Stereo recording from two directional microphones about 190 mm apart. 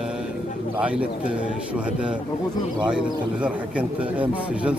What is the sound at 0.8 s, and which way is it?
Speech, 5° right (ahead or behind).